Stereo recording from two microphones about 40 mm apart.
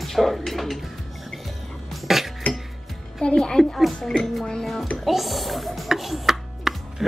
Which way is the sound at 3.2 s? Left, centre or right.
Centre.